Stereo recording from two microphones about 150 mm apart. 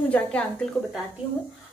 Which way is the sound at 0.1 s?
10° left (ahead or behind).